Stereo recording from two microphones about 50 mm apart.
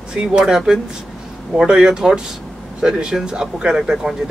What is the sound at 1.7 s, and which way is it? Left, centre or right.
Speech, centre.